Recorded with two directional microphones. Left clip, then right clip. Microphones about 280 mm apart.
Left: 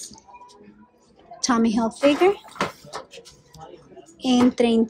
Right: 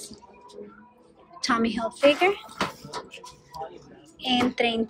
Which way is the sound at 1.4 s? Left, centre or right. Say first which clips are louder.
Left 3 dB; centre.